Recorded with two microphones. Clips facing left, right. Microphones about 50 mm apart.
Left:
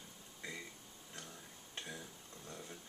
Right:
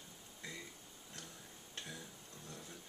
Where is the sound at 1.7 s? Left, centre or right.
Centre.